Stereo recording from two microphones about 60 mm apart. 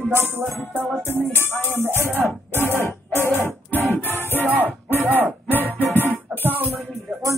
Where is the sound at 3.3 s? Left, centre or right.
Left.